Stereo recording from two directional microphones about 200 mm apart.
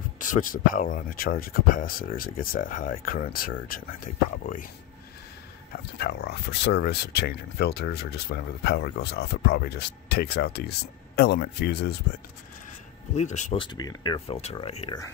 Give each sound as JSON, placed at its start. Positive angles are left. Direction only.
{"t": 0.2, "sound": "speech", "side_deg": 40}
{"t": 5.8, "sound": "speech", "side_deg": 55}
{"t": 13.1, "sound": "speech", "side_deg": 35}
{"t": 13.6, "sound": "speech", "side_deg": 20}